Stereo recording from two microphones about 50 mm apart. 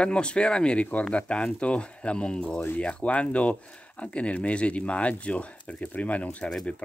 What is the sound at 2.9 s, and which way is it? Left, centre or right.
Speech, left.